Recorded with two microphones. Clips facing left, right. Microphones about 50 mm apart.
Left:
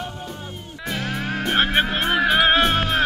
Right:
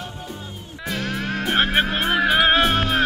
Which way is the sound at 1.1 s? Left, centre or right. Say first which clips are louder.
Even; centre.